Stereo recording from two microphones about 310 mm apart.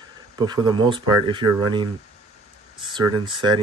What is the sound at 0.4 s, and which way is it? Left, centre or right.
Speech, centre.